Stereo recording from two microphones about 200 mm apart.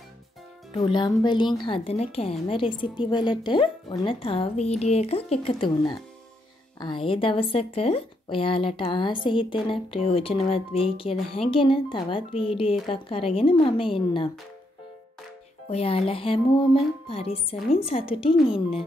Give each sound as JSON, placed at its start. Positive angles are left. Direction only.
{"t": 0.7, "sound": "a woman's voice", "side_deg": 25}
{"t": 15.7, "sound": "a woman's voice", "side_deg": 30}